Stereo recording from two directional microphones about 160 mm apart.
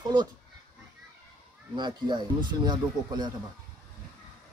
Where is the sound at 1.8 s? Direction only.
25° right (ahead or behind).